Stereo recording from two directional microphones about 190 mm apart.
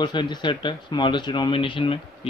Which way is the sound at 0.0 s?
25° left (ahead or behind).